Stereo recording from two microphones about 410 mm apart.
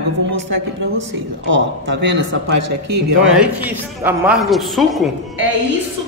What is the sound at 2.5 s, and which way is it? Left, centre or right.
Speech, right.